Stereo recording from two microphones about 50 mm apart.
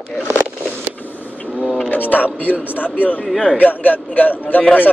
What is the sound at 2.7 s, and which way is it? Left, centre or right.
A man's voice, left.